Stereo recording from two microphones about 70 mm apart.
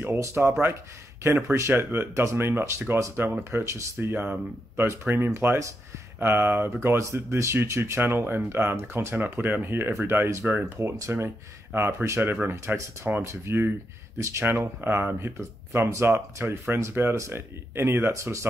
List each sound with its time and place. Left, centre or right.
0.4 s speech: right
10.4 s speech: right
11.0 s speech: right
14.4 s speech: right
15.9 s speech: right